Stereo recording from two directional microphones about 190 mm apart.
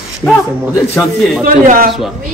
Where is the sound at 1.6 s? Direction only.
50° right (ahead or behind).